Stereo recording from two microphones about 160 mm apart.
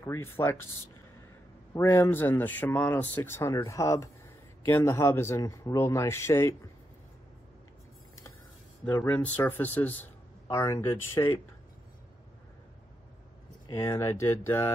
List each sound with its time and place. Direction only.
0.0 s speech: 15° left (ahead or behind)
1.7 s speech: 15° left (ahead or behind)
8.8 s speech: 10° left (ahead or behind)
13.7 s speech: 15° left (ahead or behind)